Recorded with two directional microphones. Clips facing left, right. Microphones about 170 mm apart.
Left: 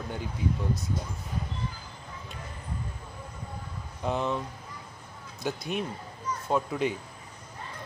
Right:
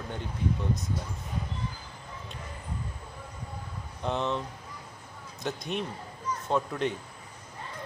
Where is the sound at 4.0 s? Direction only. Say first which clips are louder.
Left 1 dB; 5° left (ahead or behind).